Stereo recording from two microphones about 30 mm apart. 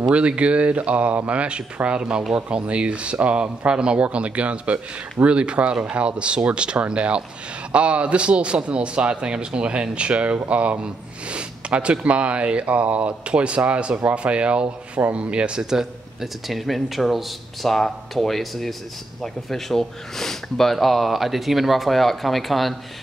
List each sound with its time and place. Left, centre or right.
0.4 s a man's voice: right
4.0 s a man's voice: right
13.3 s a man's voice: right
15.7 s a man's voice: centre
16.4 s speech: centre